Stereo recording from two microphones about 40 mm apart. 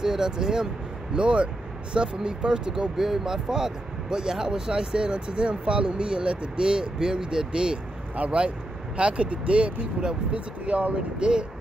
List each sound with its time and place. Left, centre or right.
0.0 s speech: centre
8.2 s speech: right
11.1 s speech: right